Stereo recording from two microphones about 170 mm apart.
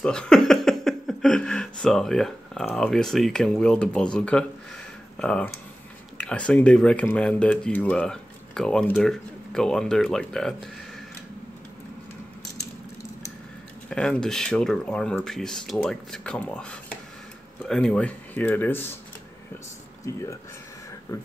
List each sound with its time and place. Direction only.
0.0 s speech: 5° left (ahead or behind)
13.8 s speech: 5° left (ahead or behind)
20.1 s speech: 15° left (ahead or behind)